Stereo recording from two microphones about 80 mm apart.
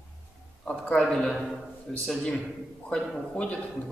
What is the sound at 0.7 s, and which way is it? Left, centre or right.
Speech, centre.